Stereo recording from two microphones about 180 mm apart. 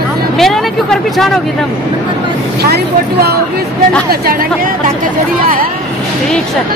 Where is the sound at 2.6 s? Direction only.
60° right (ahead or behind).